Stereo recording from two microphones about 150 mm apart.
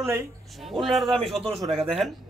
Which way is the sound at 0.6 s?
Centre (ahead or behind).